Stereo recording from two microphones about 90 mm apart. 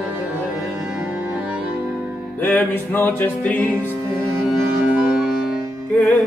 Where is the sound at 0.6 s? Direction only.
5° right (ahead or behind).